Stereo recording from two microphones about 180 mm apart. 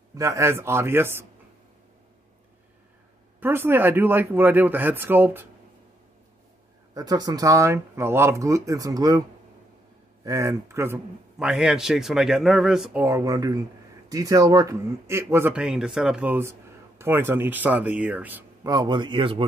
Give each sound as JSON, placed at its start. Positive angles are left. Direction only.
{"t": 0.1, "sound": "speech", "side_deg": -15}
{"t": 3.3, "sound": "speech", "side_deg": -10}
{"t": 6.9, "sound": "speech", "side_deg": -20}
{"t": 10.2, "sound": "speech", "side_deg": -15}
{"t": 11.3, "sound": "a man's voice", "side_deg": -5}
{"t": 13.0, "sound": "speech", "side_deg": -20}